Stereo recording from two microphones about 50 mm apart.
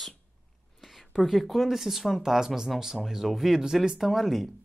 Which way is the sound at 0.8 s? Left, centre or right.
Centre.